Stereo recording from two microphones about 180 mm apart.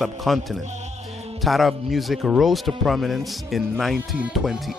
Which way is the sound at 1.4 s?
Centre (ahead or behind).